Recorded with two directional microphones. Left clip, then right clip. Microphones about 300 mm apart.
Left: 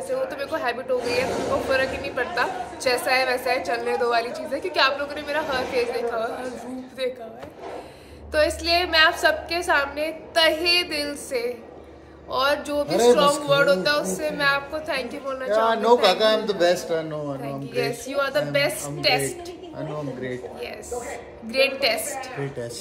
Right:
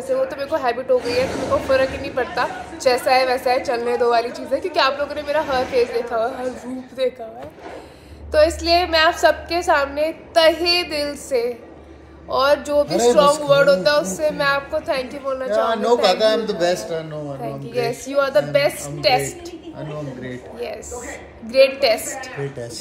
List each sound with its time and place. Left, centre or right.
0.1 s a woman's voice: centre
8.3 s a woman's voice: centre
15.6 s a man's voice: centre
17.4 s a woman's voice: centre
21.5 s a woman's voice: centre